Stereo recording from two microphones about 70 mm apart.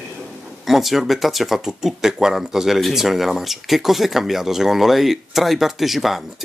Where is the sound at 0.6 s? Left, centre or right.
Centre.